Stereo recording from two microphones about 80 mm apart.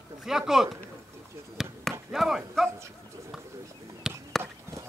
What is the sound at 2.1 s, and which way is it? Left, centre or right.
Speech, centre.